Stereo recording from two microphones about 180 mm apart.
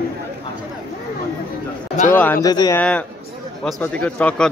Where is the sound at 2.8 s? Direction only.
10° left (ahead or behind).